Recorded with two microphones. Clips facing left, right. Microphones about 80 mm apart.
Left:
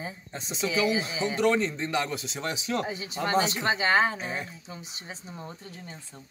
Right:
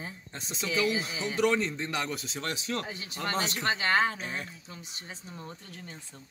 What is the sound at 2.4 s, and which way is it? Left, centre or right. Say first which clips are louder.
Speech: left 5 dB; centre.